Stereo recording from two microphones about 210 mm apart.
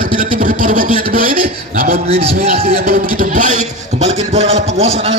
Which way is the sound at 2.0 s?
30° right (ahead or behind).